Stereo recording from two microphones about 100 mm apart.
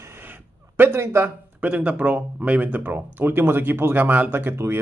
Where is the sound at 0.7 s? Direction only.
25° right (ahead or behind).